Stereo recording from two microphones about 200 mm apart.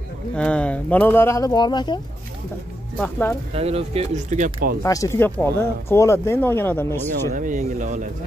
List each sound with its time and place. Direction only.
0.4 s speech: 5° left (ahead or behind); by 2.0 s 20° left (ahead or behind)
3.0 s speech: 10° left (ahead or behind)
3.5 s speech: 30° right (ahead or behind)
4.8 s speech: 15° left (ahead or behind)
7.3 s speech: 40° right (ahead or behind)